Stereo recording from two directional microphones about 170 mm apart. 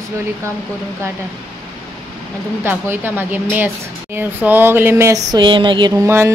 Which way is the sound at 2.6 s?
10° right (ahead or behind).